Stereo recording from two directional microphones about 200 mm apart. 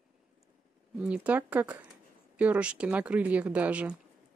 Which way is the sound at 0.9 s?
5° right (ahead or behind).